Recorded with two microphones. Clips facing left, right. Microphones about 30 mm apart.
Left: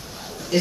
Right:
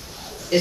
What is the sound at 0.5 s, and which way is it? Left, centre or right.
Speech, centre.